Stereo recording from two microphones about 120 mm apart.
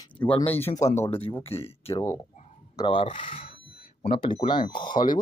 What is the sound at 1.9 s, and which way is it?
Speech, 25° left (ahead or behind).